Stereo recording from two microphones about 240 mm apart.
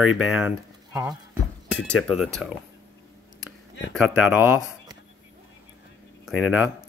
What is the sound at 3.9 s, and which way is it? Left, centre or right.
Speech, centre.